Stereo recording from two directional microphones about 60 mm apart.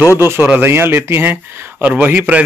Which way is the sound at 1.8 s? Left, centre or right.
Right.